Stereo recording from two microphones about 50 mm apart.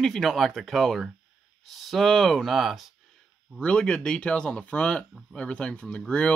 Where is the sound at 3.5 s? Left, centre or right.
Centre.